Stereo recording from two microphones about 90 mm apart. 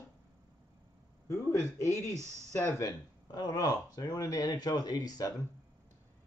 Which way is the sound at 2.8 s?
45° left (ahead or behind).